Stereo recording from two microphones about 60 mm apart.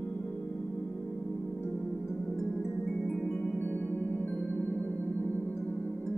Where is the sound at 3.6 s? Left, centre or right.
Left.